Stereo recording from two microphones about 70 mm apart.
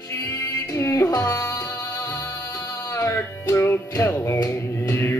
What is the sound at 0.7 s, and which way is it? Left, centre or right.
Music, left.